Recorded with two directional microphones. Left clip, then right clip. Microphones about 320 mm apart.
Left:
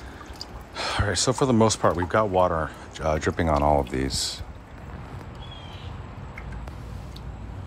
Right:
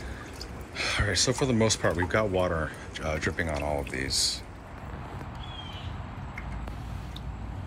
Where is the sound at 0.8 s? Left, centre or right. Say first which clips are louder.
Left 1 dB; centre.